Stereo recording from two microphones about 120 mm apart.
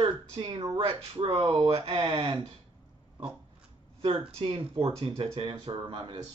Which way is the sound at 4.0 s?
50° right (ahead or behind).